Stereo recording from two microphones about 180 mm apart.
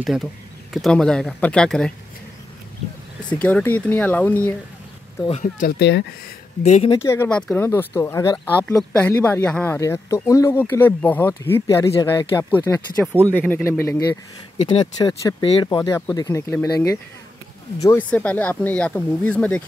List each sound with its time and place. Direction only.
0.7 s speech: centre (ahead or behind)
3.3 s speech: 5° left (ahead or behind)
5.4 s speech: 50° left (ahead or behind)
5.8 s speech: 70° left (ahead or behind)
6.6 s speech: 40° left (ahead or behind)
6.9 s speech: 15° left (ahead or behind)
9.8 s speech: 20° left (ahead or behind)
13.1 s speech: 10° right (ahead or behind)
13.5 s speech: 15° left (ahead or behind)